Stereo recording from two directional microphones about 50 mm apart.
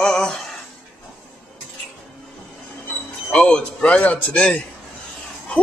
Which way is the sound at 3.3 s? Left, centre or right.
Centre.